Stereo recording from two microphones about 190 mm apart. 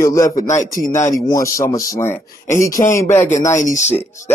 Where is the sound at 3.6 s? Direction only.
40° left (ahead or behind).